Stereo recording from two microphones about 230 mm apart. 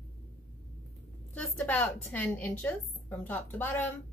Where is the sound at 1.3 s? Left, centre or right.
Centre.